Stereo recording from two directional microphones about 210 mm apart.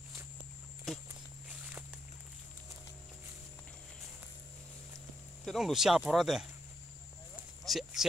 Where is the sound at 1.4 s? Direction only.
10° right (ahead or behind).